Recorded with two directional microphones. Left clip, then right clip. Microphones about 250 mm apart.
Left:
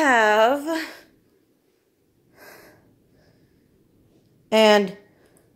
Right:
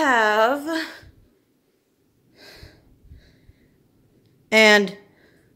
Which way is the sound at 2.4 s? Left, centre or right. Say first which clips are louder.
Even; centre.